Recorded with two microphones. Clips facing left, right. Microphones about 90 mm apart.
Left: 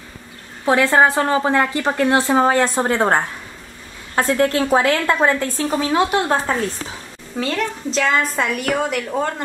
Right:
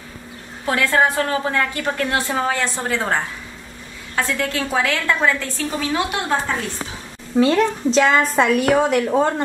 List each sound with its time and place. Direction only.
0.7 s a woman's voice: 25° left (ahead or behind)
7.5 s a woman's voice: 5° right (ahead or behind)